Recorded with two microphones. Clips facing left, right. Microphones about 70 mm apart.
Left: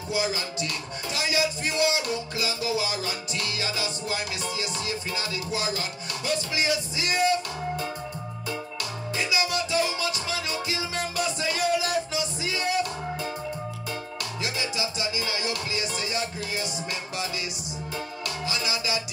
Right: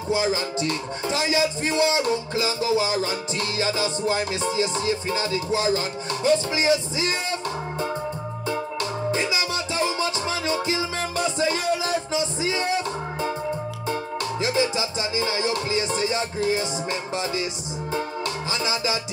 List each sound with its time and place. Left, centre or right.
0.1 s music: right
9.1 s music: right
14.4 s music: right
18.5 s music: right